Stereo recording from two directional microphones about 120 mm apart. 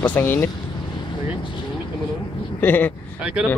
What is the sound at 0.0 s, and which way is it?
Speech, 15° left (ahead or behind).